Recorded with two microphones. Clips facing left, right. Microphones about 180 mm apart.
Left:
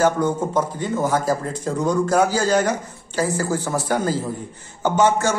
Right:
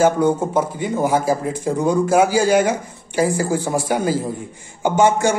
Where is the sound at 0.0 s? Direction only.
10° right (ahead or behind).